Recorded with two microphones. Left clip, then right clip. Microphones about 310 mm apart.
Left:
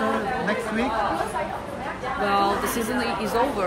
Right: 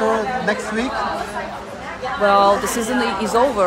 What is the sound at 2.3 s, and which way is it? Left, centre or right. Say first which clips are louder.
Speech: right 9 dB; centre.